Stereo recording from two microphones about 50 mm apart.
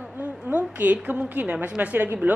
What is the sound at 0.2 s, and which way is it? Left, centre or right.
A woman's voice, right.